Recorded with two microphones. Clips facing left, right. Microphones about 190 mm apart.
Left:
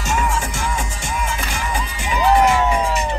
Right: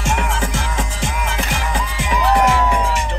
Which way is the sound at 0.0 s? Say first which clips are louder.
Even; 65° right (ahead or behind).